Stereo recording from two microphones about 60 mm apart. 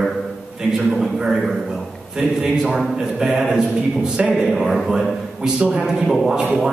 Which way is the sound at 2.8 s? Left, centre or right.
Centre.